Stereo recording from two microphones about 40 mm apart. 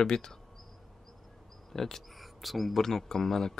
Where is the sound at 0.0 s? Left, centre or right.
Centre.